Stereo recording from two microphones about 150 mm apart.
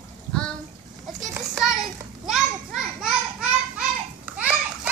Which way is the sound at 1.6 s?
5° right (ahead or behind).